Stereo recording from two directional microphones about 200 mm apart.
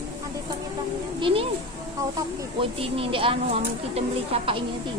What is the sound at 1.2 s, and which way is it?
Speech, 30° right (ahead or behind).